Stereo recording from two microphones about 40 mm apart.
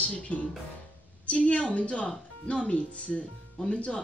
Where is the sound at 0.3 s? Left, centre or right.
Left.